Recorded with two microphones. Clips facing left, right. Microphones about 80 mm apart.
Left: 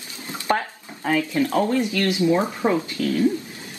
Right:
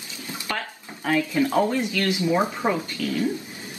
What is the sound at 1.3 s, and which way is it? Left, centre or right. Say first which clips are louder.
Speech: left 1 dB; centre.